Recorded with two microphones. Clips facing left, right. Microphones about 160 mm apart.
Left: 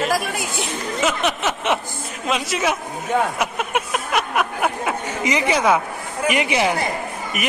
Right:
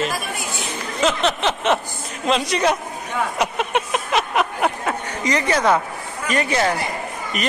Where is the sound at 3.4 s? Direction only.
5° left (ahead or behind).